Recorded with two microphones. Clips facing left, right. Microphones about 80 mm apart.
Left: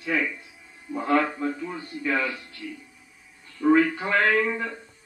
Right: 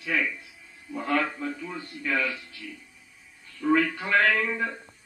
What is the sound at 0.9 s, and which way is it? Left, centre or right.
Speech, centre.